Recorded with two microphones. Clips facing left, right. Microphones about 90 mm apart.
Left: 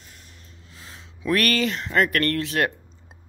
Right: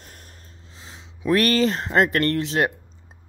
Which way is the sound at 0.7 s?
20° right (ahead or behind).